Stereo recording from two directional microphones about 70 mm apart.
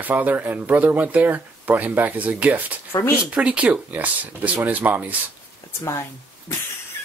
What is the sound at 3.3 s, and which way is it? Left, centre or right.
Speech, centre.